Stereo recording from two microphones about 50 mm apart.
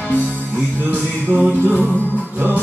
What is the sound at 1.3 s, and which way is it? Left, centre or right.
Music, right.